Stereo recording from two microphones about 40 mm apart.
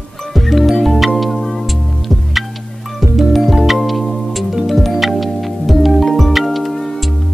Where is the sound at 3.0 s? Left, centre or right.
Centre.